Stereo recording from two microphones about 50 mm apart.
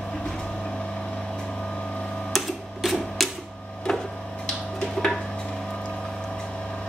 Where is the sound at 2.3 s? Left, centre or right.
Centre.